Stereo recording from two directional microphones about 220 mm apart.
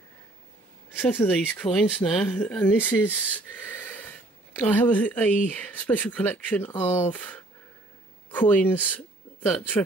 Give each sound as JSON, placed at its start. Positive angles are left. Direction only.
{"t": 0.9, "sound": "speech", "side_deg": 10}